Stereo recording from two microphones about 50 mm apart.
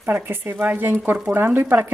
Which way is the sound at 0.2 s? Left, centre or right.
Right.